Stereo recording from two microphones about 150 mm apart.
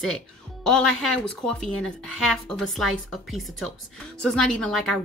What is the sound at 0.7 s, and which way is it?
A woman's voice, 5° left (ahead or behind).